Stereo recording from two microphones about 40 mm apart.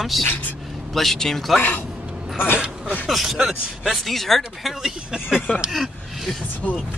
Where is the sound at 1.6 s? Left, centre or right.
Left.